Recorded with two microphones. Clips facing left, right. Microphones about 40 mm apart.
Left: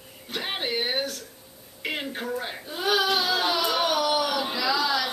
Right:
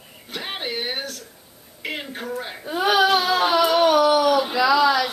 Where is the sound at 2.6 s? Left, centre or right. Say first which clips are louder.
Right 6 dB; right.